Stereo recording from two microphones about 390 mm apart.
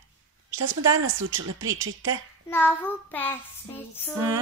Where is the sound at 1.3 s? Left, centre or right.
Right.